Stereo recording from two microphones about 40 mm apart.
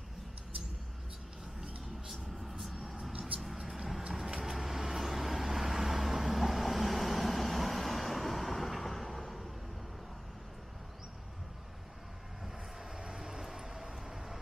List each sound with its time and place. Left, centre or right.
2.6 s vehicle: centre
12.9 s vehicle: centre